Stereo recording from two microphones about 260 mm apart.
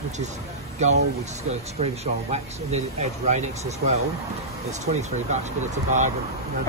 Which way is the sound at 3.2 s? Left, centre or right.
Right.